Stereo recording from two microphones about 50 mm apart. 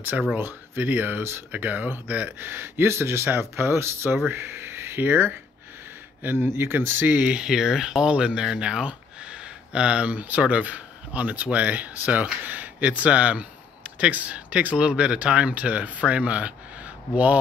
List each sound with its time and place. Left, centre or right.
0.4 s speech: right
2.4 s speech: right
7.1 s speech: right
7.3 s speech: centre
8.1 s speech: centre
10.1 s speech: right